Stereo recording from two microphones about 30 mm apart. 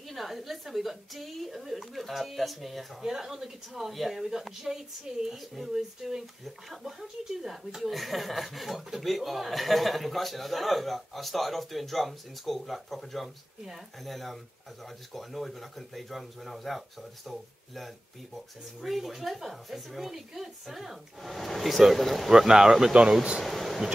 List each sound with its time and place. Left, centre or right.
0.1 s a man's voice: centre
3.0 s a woman's voice: centre
5.3 s a man's voice: centre
5.7 s a woman's voice: centre
22.5 s a woman's voice: centre
23.4 s speech: centre